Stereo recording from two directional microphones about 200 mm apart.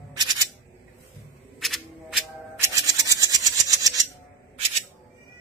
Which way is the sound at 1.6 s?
Centre (ahead or behind).